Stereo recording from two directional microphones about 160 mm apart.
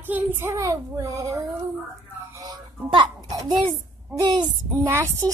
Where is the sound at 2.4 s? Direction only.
25° right (ahead or behind).